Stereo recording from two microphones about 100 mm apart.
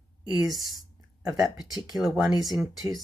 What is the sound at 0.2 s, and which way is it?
A woman's voice, 45° right (ahead or behind).